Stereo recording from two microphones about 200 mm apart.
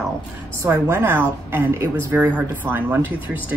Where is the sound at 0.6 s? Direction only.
15° right (ahead or behind).